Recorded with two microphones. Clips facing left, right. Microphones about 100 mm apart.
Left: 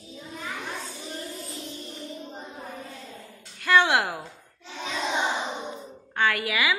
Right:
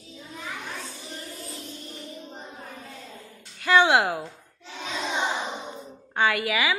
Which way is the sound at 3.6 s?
5° right (ahead or behind).